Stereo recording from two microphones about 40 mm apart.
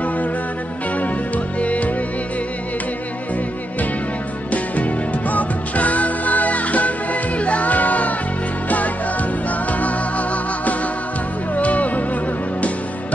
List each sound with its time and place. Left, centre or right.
1.0 s music: left
5.3 s music: left